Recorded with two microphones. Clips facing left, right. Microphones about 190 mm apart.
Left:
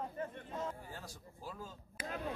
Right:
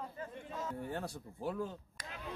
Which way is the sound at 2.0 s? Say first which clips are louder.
Left 8 dB; 45° left (ahead or behind).